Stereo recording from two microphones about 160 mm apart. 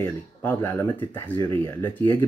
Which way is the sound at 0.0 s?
15° left (ahead or behind).